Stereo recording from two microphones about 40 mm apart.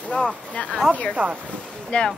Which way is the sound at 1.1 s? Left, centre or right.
Right.